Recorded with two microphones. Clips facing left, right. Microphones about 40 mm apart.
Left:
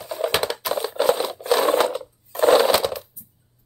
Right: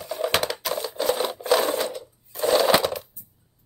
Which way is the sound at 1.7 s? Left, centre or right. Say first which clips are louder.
Left 7 dB; left.